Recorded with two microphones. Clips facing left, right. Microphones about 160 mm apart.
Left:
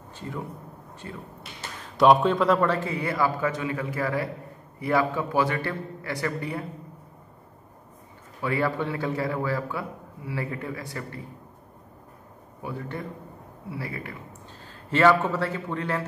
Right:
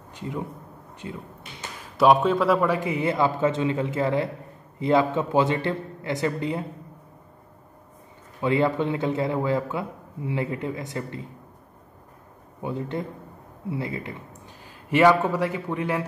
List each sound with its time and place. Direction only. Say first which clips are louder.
1.0 s speech: right 3 dB; 15° right (ahead or behind)
2.0 s a man's voice: even; centre (ahead or behind); by 6.6 s 20° right (ahead or behind)
8.4 s a man's voice: right 4 dB; 20° right (ahead or behind)
12.6 s a man's voice: right 4 dB; 20° right (ahead or behind)